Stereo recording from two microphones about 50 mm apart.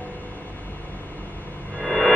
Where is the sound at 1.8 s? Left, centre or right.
Centre.